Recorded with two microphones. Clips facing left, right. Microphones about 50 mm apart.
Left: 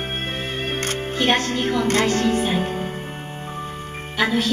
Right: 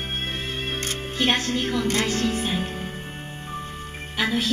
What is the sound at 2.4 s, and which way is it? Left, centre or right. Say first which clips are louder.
Music: left 5 dB; centre.